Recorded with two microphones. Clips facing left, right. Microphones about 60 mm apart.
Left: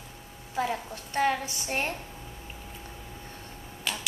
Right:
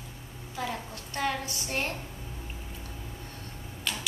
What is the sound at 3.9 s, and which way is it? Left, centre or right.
Tick-tock, centre.